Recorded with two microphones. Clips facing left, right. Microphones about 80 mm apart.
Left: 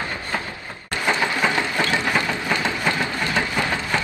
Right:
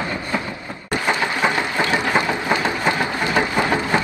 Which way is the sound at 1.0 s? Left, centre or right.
Centre.